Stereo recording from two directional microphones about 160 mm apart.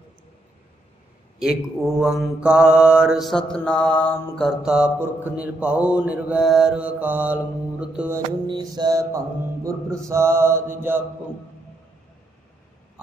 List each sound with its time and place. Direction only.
1.4 s mantra: 5° right (ahead or behind)
8.5 s mantra: 25° right (ahead or behind)